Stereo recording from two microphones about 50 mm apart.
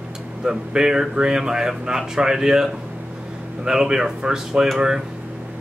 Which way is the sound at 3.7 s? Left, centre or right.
Centre.